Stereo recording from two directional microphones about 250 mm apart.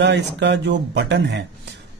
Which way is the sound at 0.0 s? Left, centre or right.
Right.